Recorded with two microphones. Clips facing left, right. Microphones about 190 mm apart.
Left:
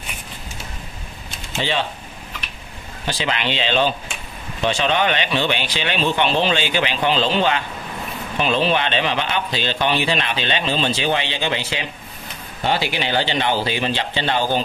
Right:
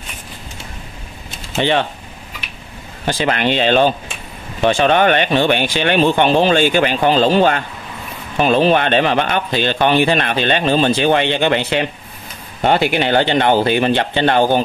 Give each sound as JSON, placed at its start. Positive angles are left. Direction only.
{"t": 1.6, "sound": "speech", "side_deg": -60}
{"t": 3.1, "sound": "a man's voice", "side_deg": -50}